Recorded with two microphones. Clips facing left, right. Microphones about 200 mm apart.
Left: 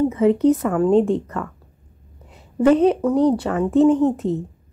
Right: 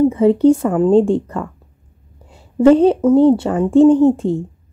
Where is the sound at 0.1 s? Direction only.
30° right (ahead or behind).